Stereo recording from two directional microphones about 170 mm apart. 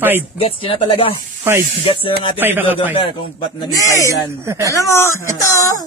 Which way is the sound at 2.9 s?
30° left (ahead or behind).